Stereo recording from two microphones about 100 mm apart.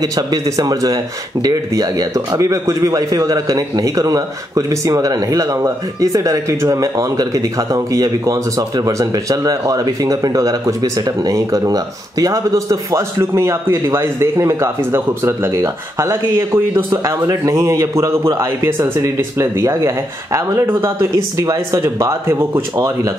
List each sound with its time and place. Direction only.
0.0 s speech: 35° right (ahead or behind)